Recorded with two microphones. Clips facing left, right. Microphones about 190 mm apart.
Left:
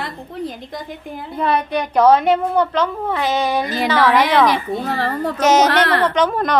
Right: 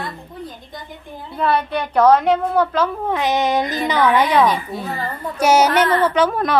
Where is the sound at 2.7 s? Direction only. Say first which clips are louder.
Even; 5° right (ahead or behind).